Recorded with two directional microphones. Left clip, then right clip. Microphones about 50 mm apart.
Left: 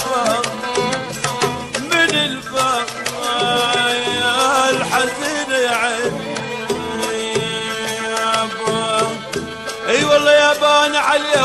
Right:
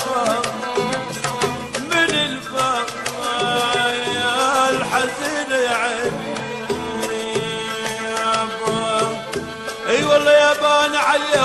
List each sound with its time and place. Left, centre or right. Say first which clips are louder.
0.1 s music: left 2 dB; right
8.1 s music: left 2 dB; right